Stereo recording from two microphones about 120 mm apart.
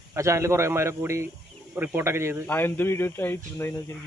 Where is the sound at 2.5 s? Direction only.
20° left (ahead or behind).